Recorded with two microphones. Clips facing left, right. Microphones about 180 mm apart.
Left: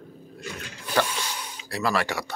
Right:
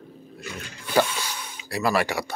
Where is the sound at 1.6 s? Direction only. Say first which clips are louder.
Right 3 dB; 10° right (ahead or behind).